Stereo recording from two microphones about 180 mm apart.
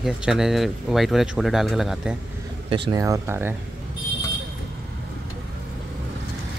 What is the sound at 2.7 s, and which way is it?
Speech, 20° right (ahead or behind).